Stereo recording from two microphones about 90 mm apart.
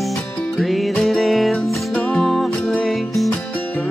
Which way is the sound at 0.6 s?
Centre (ahead or behind).